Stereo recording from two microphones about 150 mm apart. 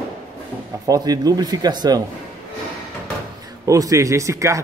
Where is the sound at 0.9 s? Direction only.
25° right (ahead or behind).